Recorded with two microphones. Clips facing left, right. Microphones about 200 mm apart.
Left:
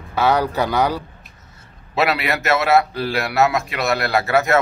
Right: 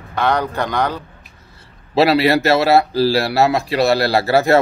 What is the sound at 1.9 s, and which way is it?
Speech, 30° right (ahead or behind).